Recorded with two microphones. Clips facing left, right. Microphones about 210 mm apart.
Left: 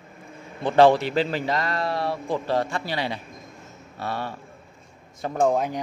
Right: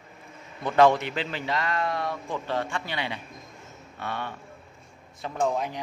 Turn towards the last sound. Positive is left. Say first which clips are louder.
# left 5 dB
turn(degrees=50)  # may be behind; listen again after turning